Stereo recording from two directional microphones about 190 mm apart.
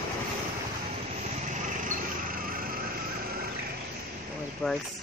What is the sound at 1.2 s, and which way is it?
Vehicle, 40° right (ahead or behind).